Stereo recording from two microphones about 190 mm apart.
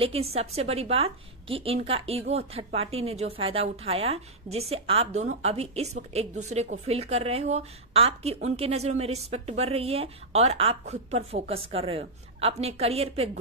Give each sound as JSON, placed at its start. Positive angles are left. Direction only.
{"t": 0.0, "sound": "a woman's voice", "side_deg": -30}